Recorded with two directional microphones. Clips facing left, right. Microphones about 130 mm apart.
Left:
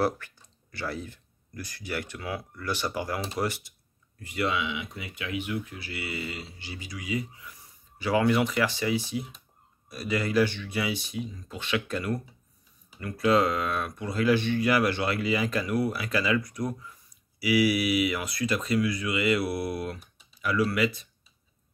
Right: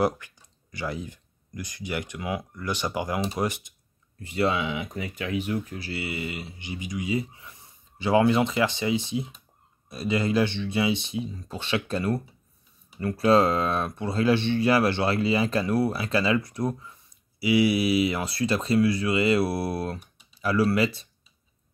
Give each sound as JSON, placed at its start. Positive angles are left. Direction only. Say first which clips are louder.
{"t": 0.0, "sound": "speech", "louder": "right 2 dB", "side_deg": -15}